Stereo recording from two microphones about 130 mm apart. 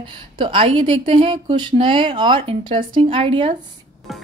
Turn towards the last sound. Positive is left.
turn(degrees=-40)  # may be behind; listen again after turning